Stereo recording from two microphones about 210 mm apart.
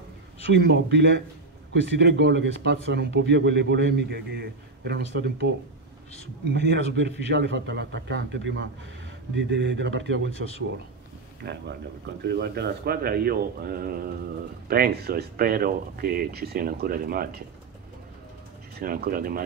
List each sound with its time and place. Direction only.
0.5 s a man's voice: 55° right (ahead or behind)
6.5 s a man's voice: 55° right (ahead or behind)
11.4 s speech: 50° right (ahead or behind)
18.8 s speech: 45° right (ahead or behind)